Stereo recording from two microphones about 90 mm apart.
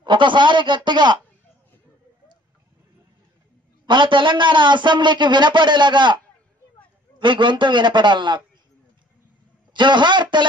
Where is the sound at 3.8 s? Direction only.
60° right (ahead or behind).